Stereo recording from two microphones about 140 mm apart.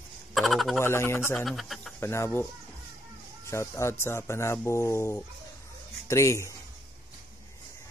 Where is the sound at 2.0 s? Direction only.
20° left (ahead or behind).